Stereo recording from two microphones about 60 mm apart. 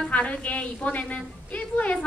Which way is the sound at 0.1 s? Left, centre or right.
Left.